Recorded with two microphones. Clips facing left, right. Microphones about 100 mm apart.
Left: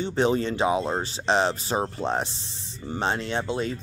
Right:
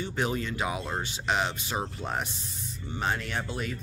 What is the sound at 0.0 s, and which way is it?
Speech, 30° left (ahead or behind).